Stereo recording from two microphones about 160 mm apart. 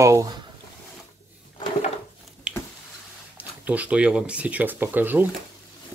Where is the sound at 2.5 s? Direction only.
5° right (ahead or behind).